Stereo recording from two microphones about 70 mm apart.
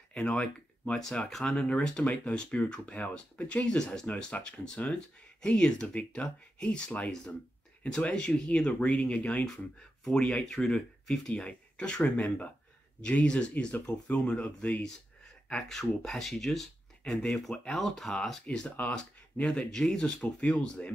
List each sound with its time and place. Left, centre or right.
0.1 s speech: centre
3.7 s speech: centre
10.0 s speech: centre